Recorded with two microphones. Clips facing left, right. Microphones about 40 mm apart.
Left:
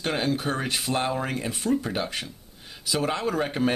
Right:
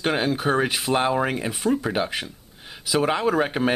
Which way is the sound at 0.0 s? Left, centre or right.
Centre.